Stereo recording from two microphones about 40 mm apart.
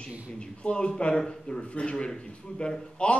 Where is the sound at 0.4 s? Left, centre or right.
Left.